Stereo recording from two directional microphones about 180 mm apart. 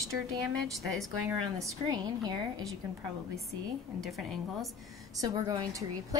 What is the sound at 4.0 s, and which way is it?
Speech, centre (ahead or behind).